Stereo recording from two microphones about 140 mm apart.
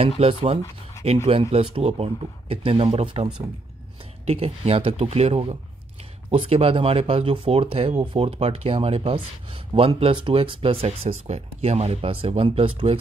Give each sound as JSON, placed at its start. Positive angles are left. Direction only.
{"t": 0.2, "sound": "speech", "side_deg": -40}
{"t": 4.3, "sound": "speech", "side_deg": -45}